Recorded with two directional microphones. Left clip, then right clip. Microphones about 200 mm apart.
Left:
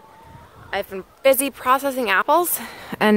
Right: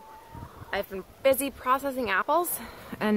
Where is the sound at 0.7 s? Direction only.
45° left (ahead or behind).